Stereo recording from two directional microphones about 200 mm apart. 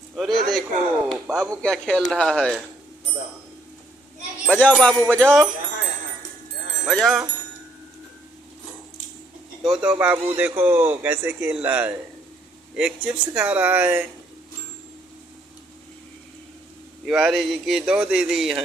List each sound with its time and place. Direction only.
0.1 s a sound: centre (ahead or behind)
1.6 s a man's voice: 5° left (ahead or behind)
4.5 s a man's voice: 5° left (ahead or behind)
6.9 s a man's voice: centre (ahead or behind)
9.6 s speech: 5° right (ahead or behind)
17.0 s a man's voice: centre (ahead or behind)